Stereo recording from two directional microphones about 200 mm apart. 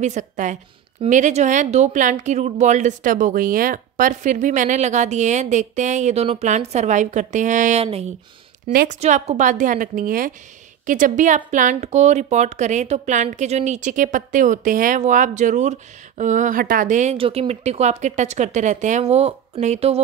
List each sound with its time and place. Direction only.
0.0 s speech: 35° right (ahead or behind)